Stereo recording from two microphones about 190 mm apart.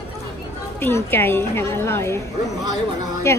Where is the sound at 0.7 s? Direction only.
10° left (ahead or behind).